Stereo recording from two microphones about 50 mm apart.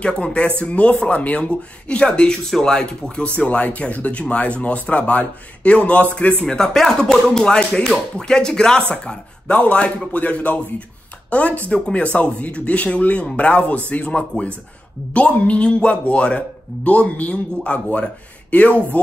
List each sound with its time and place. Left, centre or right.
0.0 s speech: left
6.4 s speech: centre